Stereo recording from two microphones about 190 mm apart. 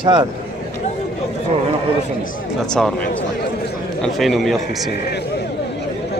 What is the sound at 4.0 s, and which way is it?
Speech, centre (ahead or behind).